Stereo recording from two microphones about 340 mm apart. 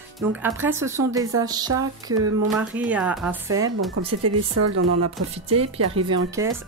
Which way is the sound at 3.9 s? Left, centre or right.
Right.